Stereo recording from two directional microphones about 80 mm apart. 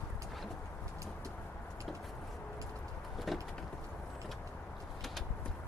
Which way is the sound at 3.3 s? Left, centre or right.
Centre.